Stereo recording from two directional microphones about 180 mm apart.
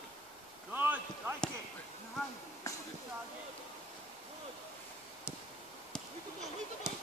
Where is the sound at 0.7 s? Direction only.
10° right (ahead or behind).